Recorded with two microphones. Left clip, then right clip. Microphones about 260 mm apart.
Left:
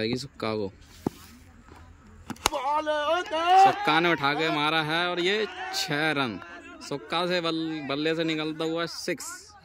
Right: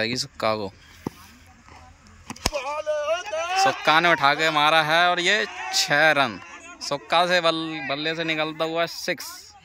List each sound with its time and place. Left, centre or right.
0.0 s speech: centre
2.5 s a sound: left
3.8 s speech: centre